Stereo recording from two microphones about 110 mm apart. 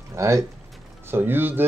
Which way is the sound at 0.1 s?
25° right (ahead or behind).